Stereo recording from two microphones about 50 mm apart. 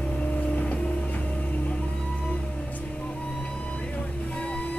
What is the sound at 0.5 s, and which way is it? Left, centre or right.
Vehicle, left.